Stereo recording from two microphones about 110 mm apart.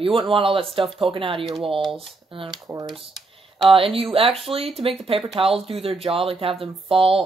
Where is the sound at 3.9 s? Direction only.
55° right (ahead or behind).